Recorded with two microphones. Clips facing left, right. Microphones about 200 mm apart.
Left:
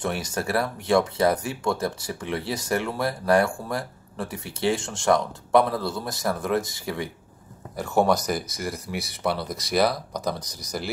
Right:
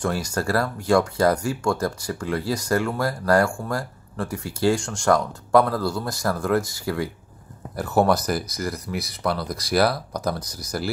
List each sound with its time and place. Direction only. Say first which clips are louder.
0.0 s speech: right 3 dB; 20° left (ahead or behind)
5.9 s speech: right 3 dB; centre (ahead or behind)
6.2 s speech: right 2 dB; 20° left (ahead or behind)
7.7 s speech: right 2 dB; 5° right (ahead or behind)
10.1 s speech: right 2 dB; 15° left (ahead or behind)